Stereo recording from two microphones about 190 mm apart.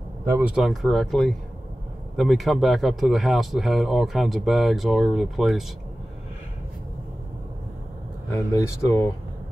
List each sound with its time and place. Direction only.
0.2 s speech: 10° right (ahead or behind)
8.3 s speech: 15° left (ahead or behind)